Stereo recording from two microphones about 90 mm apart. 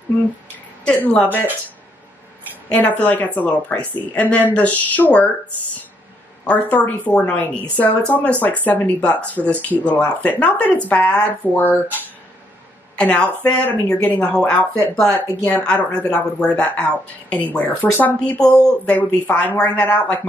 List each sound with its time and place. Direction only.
0.8 s speech: 15° left (ahead or behind)
2.7 s speech: 15° left (ahead or behind)
6.4 s speech: 15° left (ahead or behind)
12.9 s a woman's voice: 15° left (ahead or behind)